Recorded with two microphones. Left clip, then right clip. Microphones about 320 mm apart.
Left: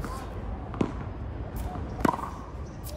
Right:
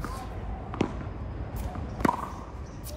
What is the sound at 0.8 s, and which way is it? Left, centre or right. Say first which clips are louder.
Fireworks: even; right.